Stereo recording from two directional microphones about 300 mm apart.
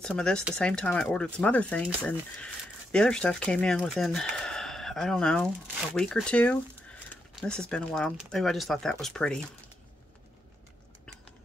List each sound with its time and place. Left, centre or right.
0.0 s speech: centre